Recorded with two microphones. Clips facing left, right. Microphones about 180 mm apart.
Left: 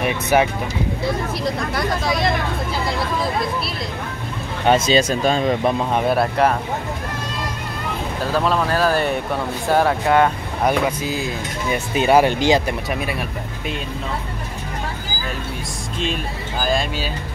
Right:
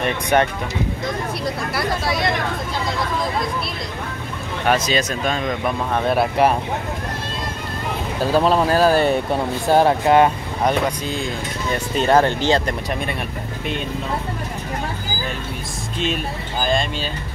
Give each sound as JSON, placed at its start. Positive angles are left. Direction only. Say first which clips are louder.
{"t": 0.0, "sound": "speech", "louder": "left 1 dB", "side_deg": 5}
{"t": 1.7, "sound": "speech", "louder": "left 1 dB", "side_deg": -5}
{"t": 4.6, "sound": "speech", "louder": "left 4 dB", "side_deg": 25}
{"t": 8.4, "sound": "speech", "louder": "right 3 dB", "side_deg": -30}
{"t": 10.6, "sound": "speech", "louder": "left 1 dB", "side_deg": 5}